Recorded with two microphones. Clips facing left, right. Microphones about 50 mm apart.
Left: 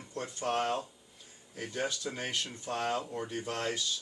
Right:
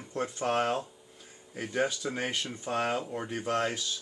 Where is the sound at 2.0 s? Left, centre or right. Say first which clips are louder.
Right 4 dB; right.